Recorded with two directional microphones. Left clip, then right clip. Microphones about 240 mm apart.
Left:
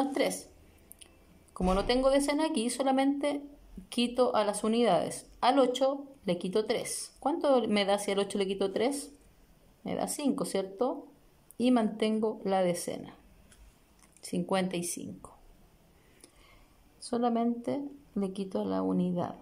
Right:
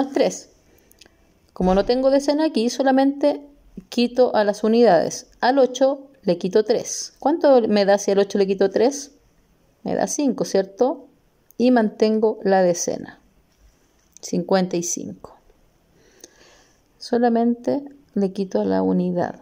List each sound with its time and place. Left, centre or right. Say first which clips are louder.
0.0 s a woman's voice: right 10 dB; centre
1.5 s a woman's voice: right 10 dB; centre
14.3 s speech: right 11 dB; centre
16.2 s a sound: right 12 dB; centre
17.0 s a woman's voice: right 11 dB; centre